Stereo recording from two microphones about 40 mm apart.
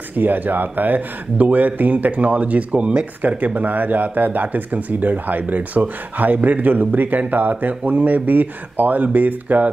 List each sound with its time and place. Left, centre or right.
0.2 s speech: right
3.2 s speech: right